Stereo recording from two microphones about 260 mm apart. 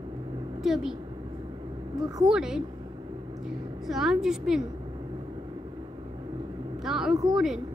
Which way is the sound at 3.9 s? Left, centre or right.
Centre.